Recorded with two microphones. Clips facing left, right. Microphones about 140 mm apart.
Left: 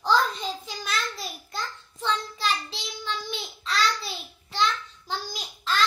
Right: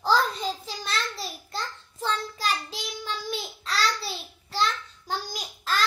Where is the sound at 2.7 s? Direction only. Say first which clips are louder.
Even; 40° right (ahead or behind).